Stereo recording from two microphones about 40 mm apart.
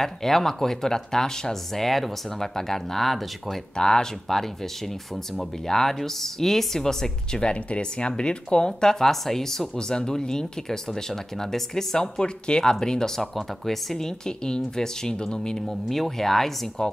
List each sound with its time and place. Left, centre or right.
0.0 s speech: centre
3.7 s speech: centre
7.4 s speech: left
15.6 s speech: centre